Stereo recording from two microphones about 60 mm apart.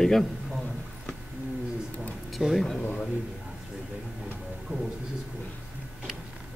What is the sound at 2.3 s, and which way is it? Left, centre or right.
Speech, centre.